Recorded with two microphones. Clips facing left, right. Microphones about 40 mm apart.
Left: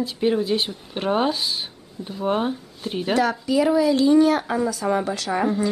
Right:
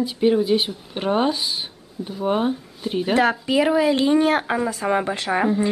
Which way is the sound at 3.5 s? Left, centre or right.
Right.